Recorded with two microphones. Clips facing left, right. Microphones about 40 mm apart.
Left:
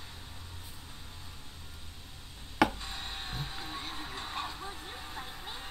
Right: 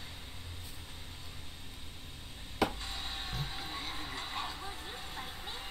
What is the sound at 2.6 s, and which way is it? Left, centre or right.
Chopping, left.